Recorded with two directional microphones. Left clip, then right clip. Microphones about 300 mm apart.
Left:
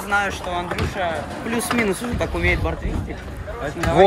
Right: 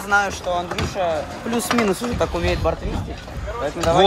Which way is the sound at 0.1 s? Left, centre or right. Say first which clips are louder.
Right 3 dB; centre.